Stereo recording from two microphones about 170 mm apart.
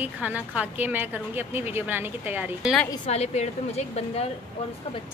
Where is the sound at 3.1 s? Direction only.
40° left (ahead or behind).